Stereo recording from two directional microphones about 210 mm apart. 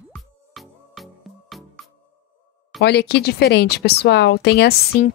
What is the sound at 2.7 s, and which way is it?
Speech, 55° left (ahead or behind).